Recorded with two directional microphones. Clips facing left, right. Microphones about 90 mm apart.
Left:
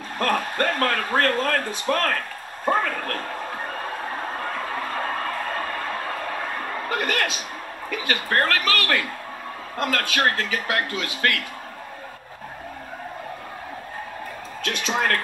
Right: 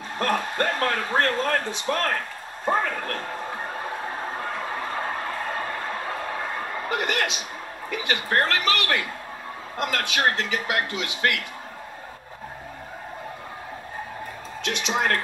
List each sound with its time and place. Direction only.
0.2 s speech: 20° right (ahead or behind)
6.9 s a man's voice: 20° right (ahead or behind)
14.6 s speech: 20° right (ahead or behind)